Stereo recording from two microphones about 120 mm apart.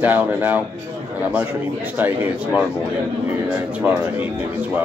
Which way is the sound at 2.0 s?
15° right (ahead or behind).